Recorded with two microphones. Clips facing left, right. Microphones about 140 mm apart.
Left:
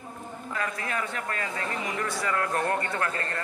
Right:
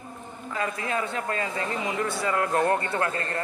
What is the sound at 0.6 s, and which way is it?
Speech, 25° right (ahead or behind).